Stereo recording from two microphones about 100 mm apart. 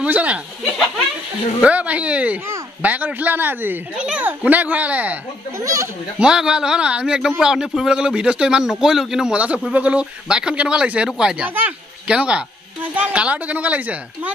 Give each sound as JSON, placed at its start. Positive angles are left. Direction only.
{"t": 0.0, "sound": "speech", "side_deg": -15}
{"t": 1.6, "sound": "a man's voice", "side_deg": -15}
{"t": 5.6, "sound": "speech", "side_deg": -30}
{"t": 6.1, "sound": "a man's voice", "side_deg": -10}